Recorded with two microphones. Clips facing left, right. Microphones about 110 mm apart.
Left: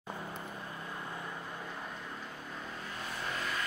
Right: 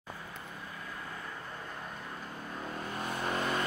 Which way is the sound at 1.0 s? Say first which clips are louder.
Left 1 dB; 20° left (ahead or behind).